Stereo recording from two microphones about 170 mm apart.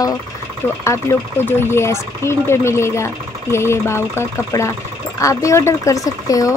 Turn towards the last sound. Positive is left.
turn(degrees=20)  # may be behind; listen again after turning